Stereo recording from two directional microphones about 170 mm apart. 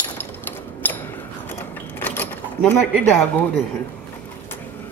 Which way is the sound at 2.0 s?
10° left (ahead or behind).